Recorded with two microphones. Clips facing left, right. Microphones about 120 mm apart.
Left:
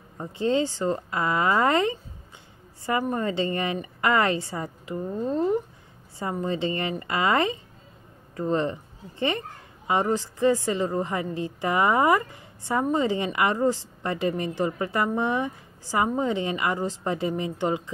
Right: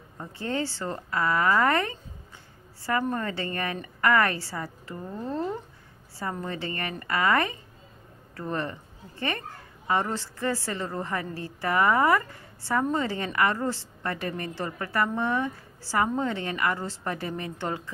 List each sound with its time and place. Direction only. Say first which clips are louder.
0.2 s a woman's voice: left 6 dB; 20° left (ahead or behind)
9.8 s a woman's voice: left 3 dB; 15° left (ahead or behind)